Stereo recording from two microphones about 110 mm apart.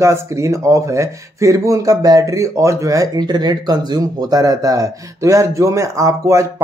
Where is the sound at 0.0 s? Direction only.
25° right (ahead or behind).